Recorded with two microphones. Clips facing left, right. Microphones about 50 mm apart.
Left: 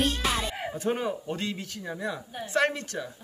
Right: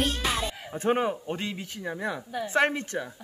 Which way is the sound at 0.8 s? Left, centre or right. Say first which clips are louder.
Right 4 dB; right.